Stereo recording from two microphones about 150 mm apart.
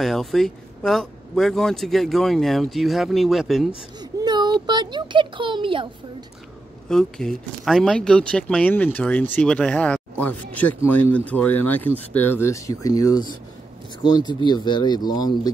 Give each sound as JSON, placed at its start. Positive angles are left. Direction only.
{"t": 0.0, "sound": "speech", "side_deg": 0}
{"t": 4.0, "sound": "a child's voice", "side_deg": -25}
{"t": 6.9, "sound": "speech", "side_deg": 5}